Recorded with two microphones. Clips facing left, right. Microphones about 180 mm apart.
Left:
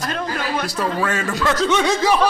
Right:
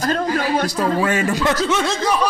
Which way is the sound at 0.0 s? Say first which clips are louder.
Right 5 dB; 35° right (ahead or behind).